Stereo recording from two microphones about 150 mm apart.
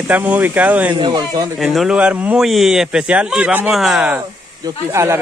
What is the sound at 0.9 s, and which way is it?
Speech, 35° right (ahead or behind).